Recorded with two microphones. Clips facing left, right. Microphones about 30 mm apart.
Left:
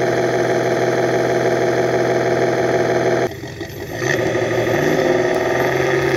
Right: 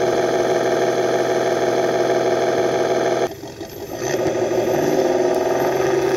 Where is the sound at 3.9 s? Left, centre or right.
Left.